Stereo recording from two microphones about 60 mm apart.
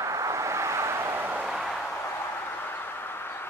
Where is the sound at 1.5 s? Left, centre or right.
Centre.